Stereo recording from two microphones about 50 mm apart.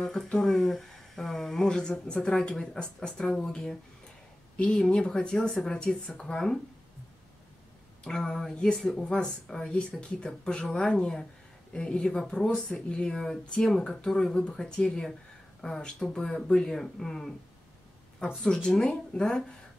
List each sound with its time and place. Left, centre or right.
0.0 s speech: centre
1.7 s speech: centre
4.9 s speech: centre
8.0 s speech: centre
8.9 s speech: left
18.3 s speech: centre